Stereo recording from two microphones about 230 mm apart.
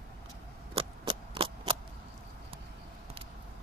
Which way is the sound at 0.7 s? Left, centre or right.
Right.